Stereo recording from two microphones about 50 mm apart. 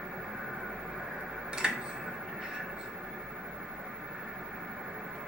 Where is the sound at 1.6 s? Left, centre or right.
Centre.